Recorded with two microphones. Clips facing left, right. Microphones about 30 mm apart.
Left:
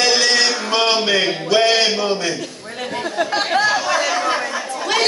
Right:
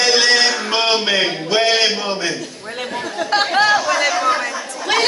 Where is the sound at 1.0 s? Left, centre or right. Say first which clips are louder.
Even; centre.